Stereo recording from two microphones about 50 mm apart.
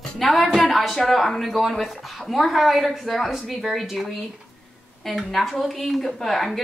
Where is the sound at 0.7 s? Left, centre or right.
Centre.